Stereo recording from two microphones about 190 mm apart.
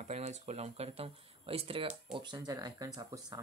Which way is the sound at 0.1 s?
35° right (ahead or behind).